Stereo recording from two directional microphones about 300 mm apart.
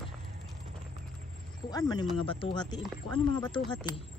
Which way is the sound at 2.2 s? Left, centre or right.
Centre.